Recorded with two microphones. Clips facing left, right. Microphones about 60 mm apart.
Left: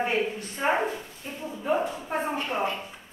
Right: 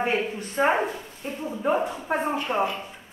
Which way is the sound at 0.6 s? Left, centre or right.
Right.